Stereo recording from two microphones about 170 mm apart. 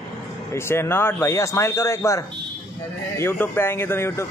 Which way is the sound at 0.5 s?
15° left (ahead or behind).